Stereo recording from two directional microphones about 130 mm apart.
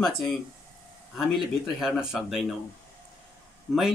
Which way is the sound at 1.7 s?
5° right (ahead or behind).